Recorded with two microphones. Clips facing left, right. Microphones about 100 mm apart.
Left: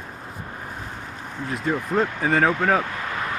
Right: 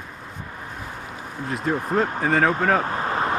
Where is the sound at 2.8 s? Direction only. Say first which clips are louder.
Right 4 dB; 35° right (ahead or behind).